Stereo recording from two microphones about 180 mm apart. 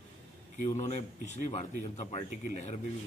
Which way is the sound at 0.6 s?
40° left (ahead or behind).